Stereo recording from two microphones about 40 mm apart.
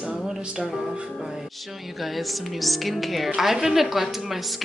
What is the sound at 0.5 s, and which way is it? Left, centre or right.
Speech, centre.